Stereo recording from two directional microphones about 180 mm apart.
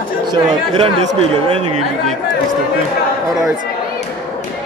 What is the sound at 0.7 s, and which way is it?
Speech, 35° right (ahead or behind).